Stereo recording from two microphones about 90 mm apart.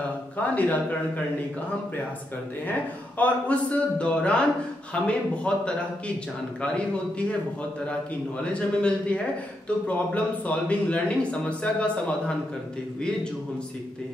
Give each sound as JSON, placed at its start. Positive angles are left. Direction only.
{"t": 0.6, "sound": "speech", "side_deg": 15}
{"t": 3.2, "sound": "speech", "side_deg": 15}
{"t": 8.5, "sound": "speech", "side_deg": 10}